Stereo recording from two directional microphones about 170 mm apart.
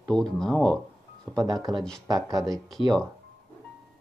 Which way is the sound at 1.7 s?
5° left (ahead or behind).